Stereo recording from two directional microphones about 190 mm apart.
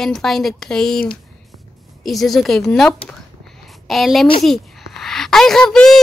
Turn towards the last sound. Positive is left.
turn(degrees=5)  # may be behind; listen again after turning